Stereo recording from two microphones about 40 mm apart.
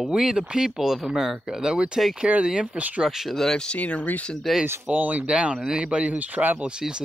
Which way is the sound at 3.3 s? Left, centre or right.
Centre.